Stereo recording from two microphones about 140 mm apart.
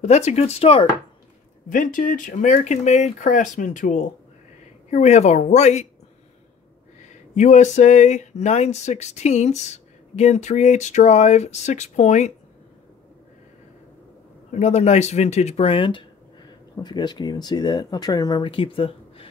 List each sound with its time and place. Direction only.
0.0 s speech: 50° left (ahead or behind)
1.7 s speech: 70° left (ahead or behind); by 5.9 s 55° left (ahead or behind)
7.3 s speech: 60° left (ahead or behind)
14.5 s speech: 55° left (ahead or behind)